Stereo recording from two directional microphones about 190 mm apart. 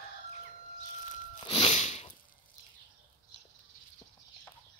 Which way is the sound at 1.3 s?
25° left (ahead or behind).